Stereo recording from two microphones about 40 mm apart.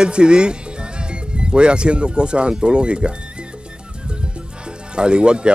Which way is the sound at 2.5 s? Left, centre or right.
Right.